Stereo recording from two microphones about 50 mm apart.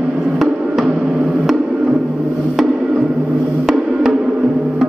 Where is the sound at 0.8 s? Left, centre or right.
Right.